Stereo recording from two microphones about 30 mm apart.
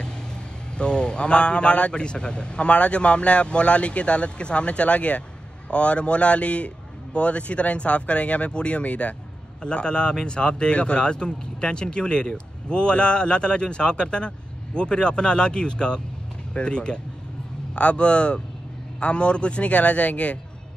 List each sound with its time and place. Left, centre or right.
0.7 s speech: left
9.6 s speech: left